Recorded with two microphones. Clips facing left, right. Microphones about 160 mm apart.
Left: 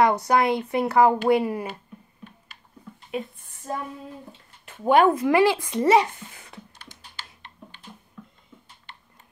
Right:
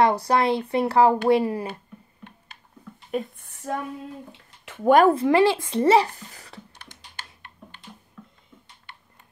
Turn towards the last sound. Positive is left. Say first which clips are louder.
# right 1 dB
turn(degrees=-55)  # may be behind; listen again after turning